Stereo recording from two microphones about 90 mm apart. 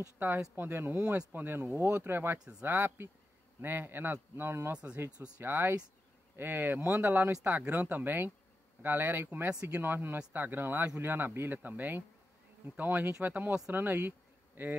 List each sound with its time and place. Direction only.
0.6 s speech: 25° right (ahead or behind)